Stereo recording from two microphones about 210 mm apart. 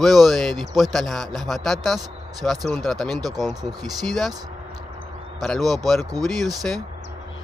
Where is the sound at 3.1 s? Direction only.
20° right (ahead or behind).